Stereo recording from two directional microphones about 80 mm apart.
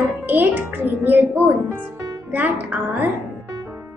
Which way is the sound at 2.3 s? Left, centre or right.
Right.